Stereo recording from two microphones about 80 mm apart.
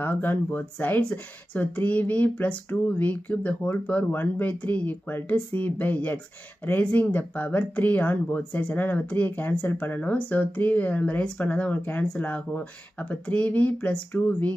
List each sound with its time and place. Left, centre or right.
0.0 s speech: left